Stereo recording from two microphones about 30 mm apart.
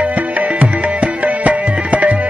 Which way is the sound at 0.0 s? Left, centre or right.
Right.